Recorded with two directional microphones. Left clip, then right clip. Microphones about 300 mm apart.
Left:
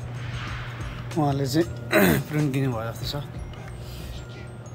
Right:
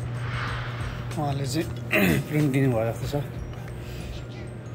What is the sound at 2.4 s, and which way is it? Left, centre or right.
Speech, centre.